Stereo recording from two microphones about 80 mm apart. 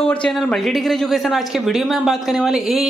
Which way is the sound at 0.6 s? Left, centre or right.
Centre.